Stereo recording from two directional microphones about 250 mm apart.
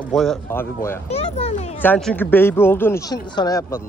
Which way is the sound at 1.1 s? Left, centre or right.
Left.